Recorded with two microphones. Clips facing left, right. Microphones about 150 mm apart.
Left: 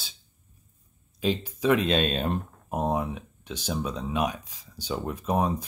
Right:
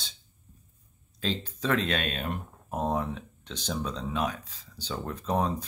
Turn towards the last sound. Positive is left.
turn(degrees=10)  # may be behind; listen again after turning